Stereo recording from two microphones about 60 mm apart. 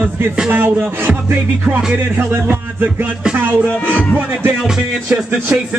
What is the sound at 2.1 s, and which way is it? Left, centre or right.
Music, right.